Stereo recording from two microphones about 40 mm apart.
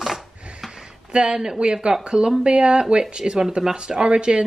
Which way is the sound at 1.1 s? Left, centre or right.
Right.